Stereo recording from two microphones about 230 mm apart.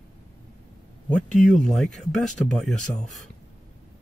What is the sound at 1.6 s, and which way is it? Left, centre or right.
Speech, centre.